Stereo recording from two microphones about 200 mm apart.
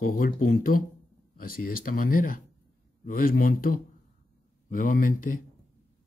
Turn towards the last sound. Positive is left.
turn(degrees=40)  # may be behind; listen again after turning